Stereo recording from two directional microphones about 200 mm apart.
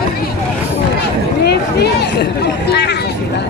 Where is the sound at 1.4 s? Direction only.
55° left (ahead or behind).